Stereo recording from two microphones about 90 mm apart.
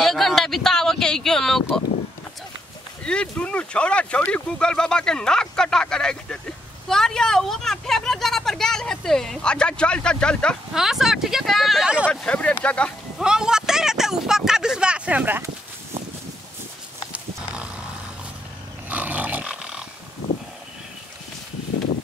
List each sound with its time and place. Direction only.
0.0 s a sound: centre (ahead or behind)
3.0 s speech: 10° left (ahead or behind)
10.7 s speech: 5° right (ahead or behind)
12.1 s speech: 10° left (ahead or behind)
13.2 s a sound: 10° right (ahead or behind)
18.9 s roar: 15° right (ahead or behind)